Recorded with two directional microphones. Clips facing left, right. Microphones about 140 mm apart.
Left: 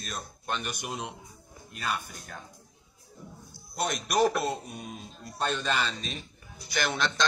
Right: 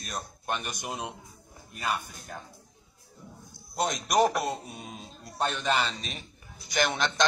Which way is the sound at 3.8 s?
15° right (ahead or behind).